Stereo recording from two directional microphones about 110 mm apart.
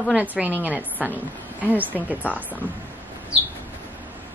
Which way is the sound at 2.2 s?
15° left (ahead or behind).